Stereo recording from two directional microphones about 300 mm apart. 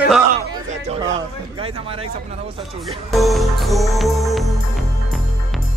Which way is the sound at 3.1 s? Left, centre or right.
Centre.